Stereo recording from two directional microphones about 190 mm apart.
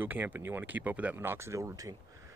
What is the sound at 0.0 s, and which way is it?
Speech, 10° right (ahead or behind).